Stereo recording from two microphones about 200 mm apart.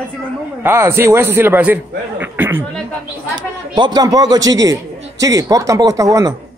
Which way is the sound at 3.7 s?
20° right (ahead or behind).